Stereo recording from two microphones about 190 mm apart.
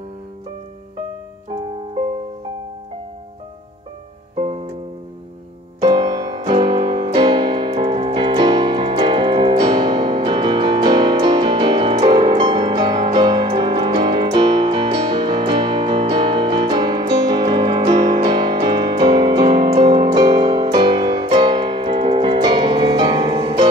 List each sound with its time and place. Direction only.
4.4 s music: 35° right (ahead or behind)
5.8 s piano: 20° right (ahead or behind)